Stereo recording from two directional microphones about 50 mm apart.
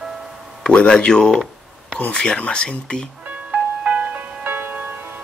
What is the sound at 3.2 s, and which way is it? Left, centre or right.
Music, right.